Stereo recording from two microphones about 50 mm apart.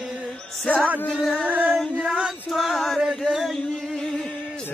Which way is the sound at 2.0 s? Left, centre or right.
Centre.